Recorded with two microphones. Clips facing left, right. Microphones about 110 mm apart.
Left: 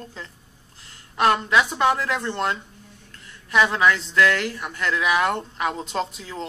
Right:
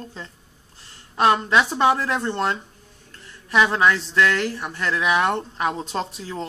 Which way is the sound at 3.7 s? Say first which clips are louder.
Right 1 dB; 30° right (ahead or behind).